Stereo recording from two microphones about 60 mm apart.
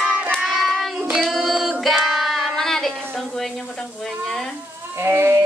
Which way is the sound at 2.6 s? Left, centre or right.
Centre.